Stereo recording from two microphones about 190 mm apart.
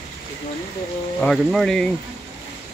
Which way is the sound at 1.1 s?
5° left (ahead or behind).